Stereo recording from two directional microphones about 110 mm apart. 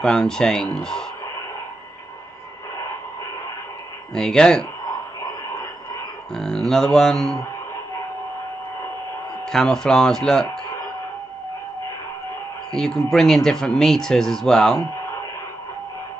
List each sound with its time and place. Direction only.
0.0 s speech: 5° left (ahead or behind)
4.1 s speech: 5° left (ahead or behind)
5.2 s a sound: 35° left (ahead or behind)
6.3 s speech: 5° left (ahead or behind)
9.5 s speech: 5° left (ahead or behind)
12.7 s speech: 5° left (ahead or behind)